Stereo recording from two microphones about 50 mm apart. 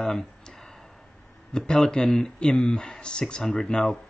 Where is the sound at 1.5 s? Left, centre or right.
Centre.